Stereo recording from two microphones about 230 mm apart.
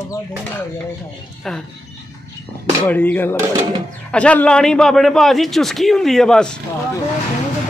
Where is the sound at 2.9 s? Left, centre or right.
Centre.